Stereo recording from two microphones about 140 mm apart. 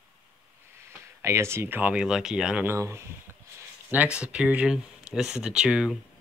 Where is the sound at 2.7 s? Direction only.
20° right (ahead or behind).